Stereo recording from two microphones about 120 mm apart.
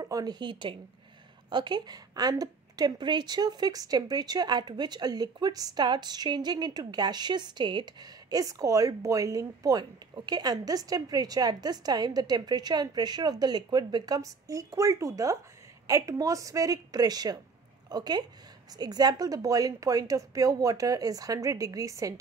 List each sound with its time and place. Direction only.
0.0 s a woman's voice: 35° right (ahead or behind)